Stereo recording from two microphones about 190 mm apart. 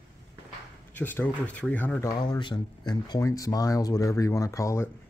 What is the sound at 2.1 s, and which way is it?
Speech, 20° left (ahead or behind).